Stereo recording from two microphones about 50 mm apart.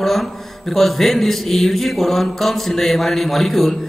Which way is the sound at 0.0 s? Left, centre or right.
Centre.